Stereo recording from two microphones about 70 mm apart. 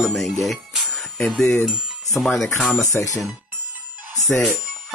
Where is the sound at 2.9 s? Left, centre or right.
Left.